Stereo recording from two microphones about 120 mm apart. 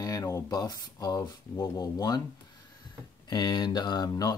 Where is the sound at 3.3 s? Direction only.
40° left (ahead or behind).